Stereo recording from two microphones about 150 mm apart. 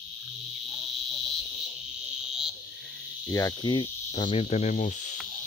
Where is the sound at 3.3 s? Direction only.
20° left (ahead or behind); by 5.0 s 55° left (ahead or behind).